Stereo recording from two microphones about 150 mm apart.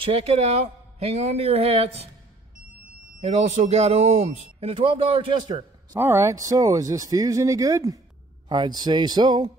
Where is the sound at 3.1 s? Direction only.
45° right (ahead or behind); by 5.9 s 30° right (ahead or behind).